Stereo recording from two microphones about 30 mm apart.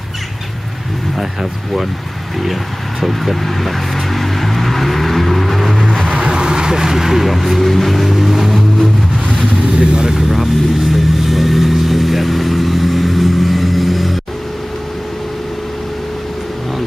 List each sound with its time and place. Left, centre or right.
1.1 s speech: centre
3.0 s vehicle: centre
6.1 s vehicle: right; by 8.6 s centre
9.8 s speech: right
10.1 s vehicle: centre